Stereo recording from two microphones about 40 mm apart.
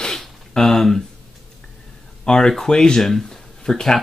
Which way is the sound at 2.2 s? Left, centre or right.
Centre.